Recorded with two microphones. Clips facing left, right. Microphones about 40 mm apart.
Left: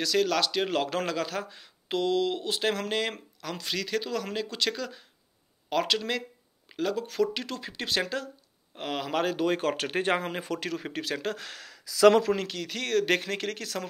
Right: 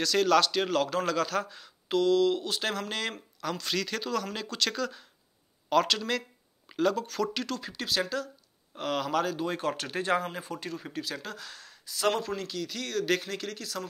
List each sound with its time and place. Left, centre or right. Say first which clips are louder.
0.0 s speech: right 2 dB; centre
7.1 s speech: left 2 dB; centre; by 8.3 s left
8.7 s speech: right 2 dB; centre
9.2 s speech: left 4 dB; left
10.3 s speech: left 5 dB; left